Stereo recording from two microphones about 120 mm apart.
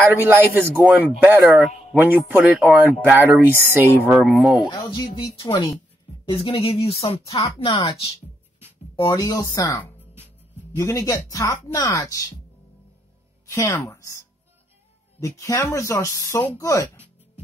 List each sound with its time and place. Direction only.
0.2 s speech: 20° right (ahead or behind)
4.7 s speech: 25° left (ahead or behind)
5.0 s speech: 40° left (ahead or behind)
6.2 s speech: 45° left (ahead or behind)
8.9 s speech: 40° left (ahead or behind)
13.5 s a woman's voice: 25° left (ahead or behind)